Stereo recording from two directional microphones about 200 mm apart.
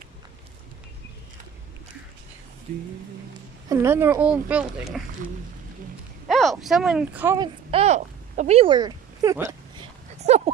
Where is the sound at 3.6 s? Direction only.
10° right (ahead or behind).